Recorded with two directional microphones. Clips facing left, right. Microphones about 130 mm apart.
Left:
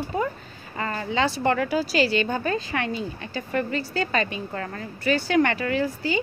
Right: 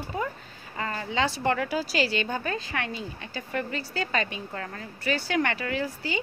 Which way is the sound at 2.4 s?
30° left (ahead or behind).